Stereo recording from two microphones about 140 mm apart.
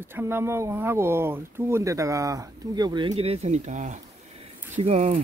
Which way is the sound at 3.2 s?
50° right (ahead or behind).